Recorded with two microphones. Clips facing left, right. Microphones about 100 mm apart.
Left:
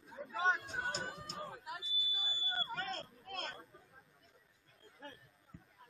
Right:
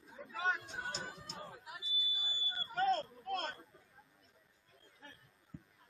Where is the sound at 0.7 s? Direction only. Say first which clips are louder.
Left 3 dB; 50° left (ahead or behind).